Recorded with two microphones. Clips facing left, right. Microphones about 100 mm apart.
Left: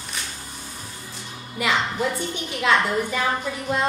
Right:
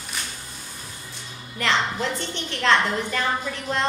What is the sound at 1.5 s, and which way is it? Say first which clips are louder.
A woman's voice: even; 10° left (ahead or behind).